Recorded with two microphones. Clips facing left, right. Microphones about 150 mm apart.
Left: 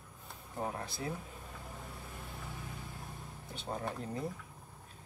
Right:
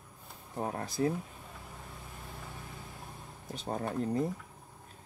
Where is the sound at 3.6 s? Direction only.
40° right (ahead or behind).